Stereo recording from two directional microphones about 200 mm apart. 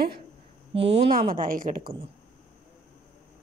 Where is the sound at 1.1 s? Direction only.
45° right (ahead or behind).